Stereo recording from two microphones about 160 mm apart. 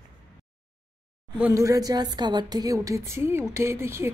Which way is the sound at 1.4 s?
20° right (ahead or behind).